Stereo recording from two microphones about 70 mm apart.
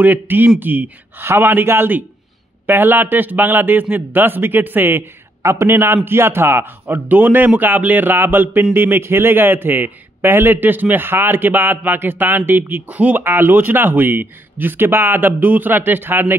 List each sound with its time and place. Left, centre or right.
0.0 s a man's voice: right
5.4 s a man's voice: right